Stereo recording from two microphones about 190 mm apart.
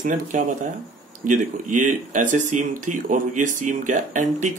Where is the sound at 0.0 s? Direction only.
40° right (ahead or behind).